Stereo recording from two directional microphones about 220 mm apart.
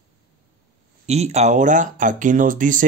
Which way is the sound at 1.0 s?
30° right (ahead or behind).